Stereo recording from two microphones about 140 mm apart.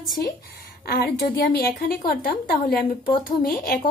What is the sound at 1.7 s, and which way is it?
A woman's voice, 90° left.